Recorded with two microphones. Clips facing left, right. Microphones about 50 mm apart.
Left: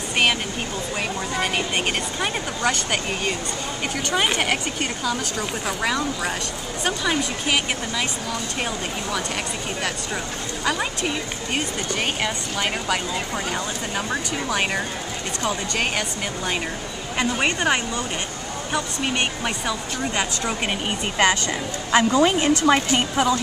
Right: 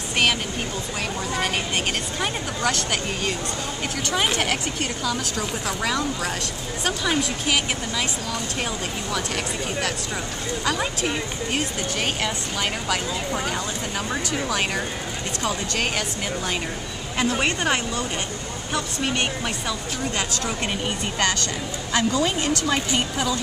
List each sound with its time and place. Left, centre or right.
2.1 s a woman's voice: centre
10.6 s speech: centre
17.2 s a woman's voice: centre; by 23.3 s left